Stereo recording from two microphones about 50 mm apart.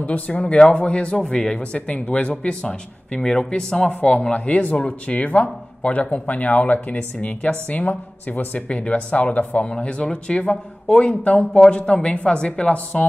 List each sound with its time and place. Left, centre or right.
0.0 s speech: left